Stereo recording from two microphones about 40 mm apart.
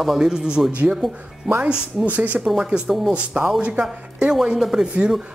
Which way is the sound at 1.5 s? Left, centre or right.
Centre.